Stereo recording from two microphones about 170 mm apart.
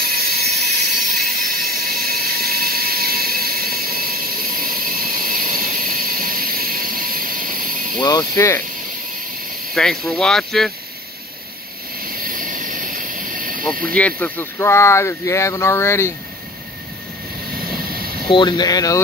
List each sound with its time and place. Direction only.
0.0 s a sound: 65° right (ahead or behind)
8.0 s speech: 25° left (ahead or behind)
9.8 s speech: centre (ahead or behind)
12.0 s vehicle: 55° right (ahead or behind)
13.9 s speech: 10° left (ahead or behind)
18.3 s speech: 25° left (ahead or behind)